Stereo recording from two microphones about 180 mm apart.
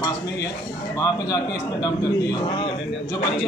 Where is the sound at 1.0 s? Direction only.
20° left (ahead or behind).